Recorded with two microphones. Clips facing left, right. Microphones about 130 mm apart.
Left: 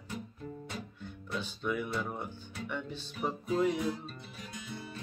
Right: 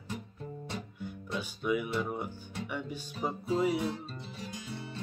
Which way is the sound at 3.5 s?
5° right (ahead or behind).